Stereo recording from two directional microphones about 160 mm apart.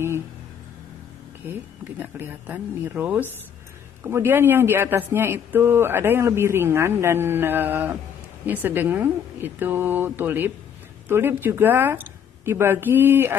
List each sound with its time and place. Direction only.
1.4 s speech: 10° right (ahead or behind)